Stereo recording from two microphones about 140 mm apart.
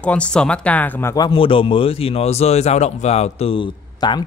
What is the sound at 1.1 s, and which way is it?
Speech, 35° left (ahead or behind).